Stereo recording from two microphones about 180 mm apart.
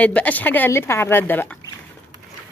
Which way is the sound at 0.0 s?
10° left (ahead or behind).